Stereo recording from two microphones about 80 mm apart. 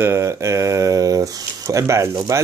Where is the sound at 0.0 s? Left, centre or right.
Right.